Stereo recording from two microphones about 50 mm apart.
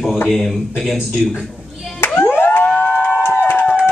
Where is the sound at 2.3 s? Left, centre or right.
Left.